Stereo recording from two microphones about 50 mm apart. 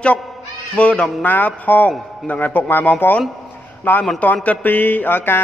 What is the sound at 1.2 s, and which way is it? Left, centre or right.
A man's voice, left.